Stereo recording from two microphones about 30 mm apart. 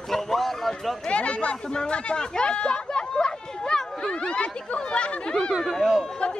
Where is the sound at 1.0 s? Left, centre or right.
Left.